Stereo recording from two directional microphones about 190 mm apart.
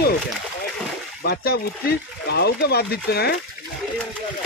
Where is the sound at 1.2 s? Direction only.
55° left (ahead or behind).